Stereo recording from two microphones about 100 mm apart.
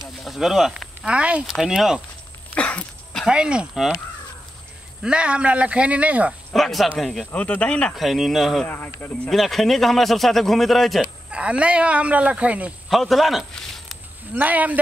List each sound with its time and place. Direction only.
0.2 s speech: centre (ahead or behind)
2.5 s a sound: 10° left (ahead or behind)
3.3 s speech: 10° right (ahead or behind)
5.0 s speech: 10° right (ahead or behind)
6.5 s speech: centre (ahead or behind)
7.3 s speech: 15° left (ahead or behind)
7.9 s speech: centre (ahead or behind)
8.6 s speech: 20° left (ahead or behind)
9.3 s speech: centre (ahead or behind)
11.3 s speech: 10° right (ahead or behind)
12.9 s speech: centre (ahead or behind)
14.3 s speech: 15° right (ahead or behind)